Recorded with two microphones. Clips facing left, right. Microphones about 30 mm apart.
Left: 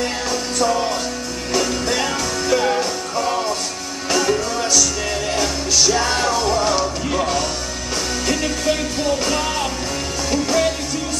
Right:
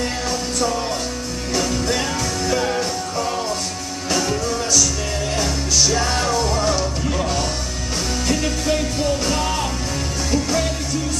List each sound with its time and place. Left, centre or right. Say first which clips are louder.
0.0 s music: left 1 dB; centre
9.2 s music: left 1 dB; centre